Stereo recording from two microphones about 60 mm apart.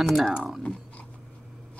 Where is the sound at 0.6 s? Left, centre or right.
Left.